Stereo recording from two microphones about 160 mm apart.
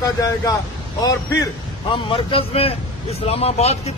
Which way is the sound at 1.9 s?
35° left (ahead or behind).